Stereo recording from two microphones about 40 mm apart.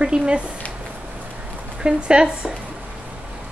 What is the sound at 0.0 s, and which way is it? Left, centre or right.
Speech, right.